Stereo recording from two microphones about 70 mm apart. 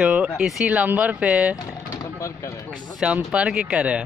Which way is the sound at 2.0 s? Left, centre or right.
Left.